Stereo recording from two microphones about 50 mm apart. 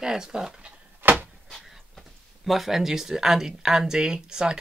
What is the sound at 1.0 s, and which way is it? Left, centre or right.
Cupboard open or close, right.